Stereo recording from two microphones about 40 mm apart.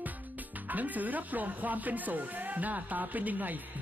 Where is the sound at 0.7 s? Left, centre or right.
Right.